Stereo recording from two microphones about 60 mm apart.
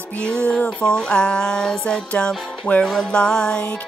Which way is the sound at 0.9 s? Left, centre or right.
Centre.